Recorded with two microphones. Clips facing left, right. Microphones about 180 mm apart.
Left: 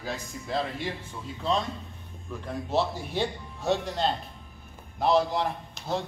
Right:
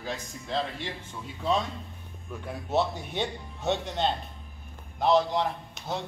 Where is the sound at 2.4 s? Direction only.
Centre (ahead or behind).